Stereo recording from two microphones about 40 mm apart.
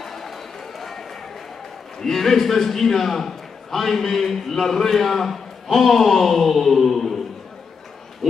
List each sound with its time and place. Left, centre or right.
0.0 s chatter: centre
0.7 s run: centre
2.0 s a man's voice: centre
8.2 s dog: centre